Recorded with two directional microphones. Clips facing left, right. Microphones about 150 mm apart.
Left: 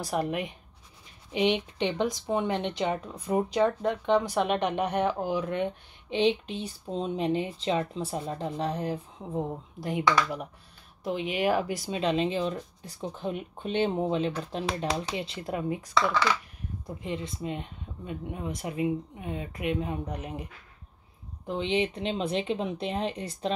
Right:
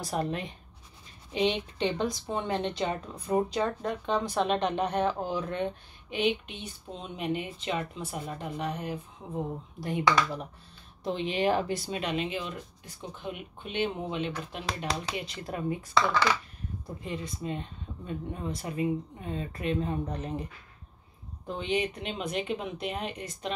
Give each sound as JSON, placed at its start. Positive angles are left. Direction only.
{"t": 0.0, "sound": "speech", "side_deg": 15}
{"t": 6.0, "sound": "speech", "side_deg": 30}
{"t": 9.8, "sound": "speech", "side_deg": 15}
{"t": 11.1, "sound": "speech", "side_deg": 5}
{"t": 21.5, "sound": "speech", "side_deg": 25}